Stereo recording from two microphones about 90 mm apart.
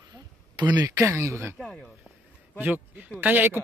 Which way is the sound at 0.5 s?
50° right (ahead or behind).